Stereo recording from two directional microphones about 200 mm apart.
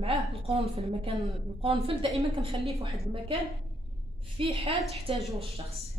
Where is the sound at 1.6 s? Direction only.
30° right (ahead or behind).